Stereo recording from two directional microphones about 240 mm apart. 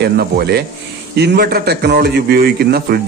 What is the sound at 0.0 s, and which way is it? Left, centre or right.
A man's voice, right.